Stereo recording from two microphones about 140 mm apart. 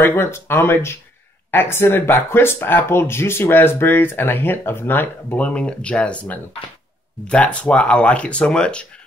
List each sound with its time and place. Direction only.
0.0 s speech: 15° left (ahead or behind)